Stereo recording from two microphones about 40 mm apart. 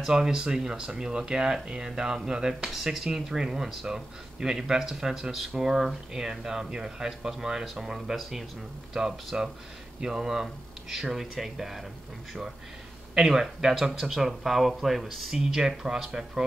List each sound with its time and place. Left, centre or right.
0.0 s speech: centre
13.3 s speech: centre
15.3 s speech: centre